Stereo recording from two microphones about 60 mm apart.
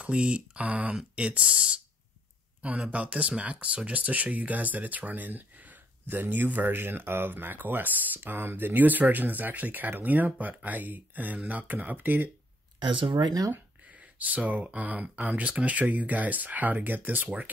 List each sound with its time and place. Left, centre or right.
0.0 s speech: centre
14.1 s speech: right